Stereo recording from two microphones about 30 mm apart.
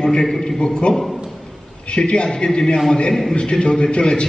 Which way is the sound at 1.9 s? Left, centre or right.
Left.